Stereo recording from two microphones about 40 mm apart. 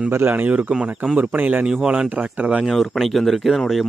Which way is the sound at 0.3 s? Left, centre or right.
Right.